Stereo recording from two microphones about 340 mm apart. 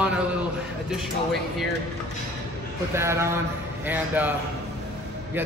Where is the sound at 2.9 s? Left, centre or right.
Centre.